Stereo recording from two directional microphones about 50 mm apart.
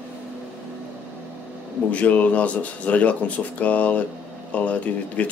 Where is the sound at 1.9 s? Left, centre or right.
Left.